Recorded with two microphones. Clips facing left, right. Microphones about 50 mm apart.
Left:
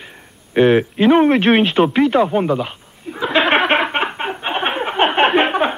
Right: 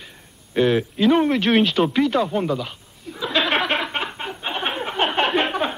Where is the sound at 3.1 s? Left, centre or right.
Left.